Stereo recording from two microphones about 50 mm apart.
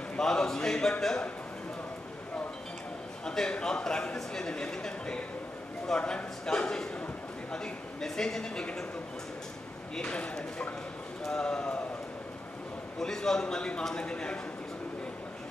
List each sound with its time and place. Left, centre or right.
0.2 s a man's voice: centre
3.3 s a man's voice: centre
10.0 s a man's voice: left
13.0 s a man's voice: centre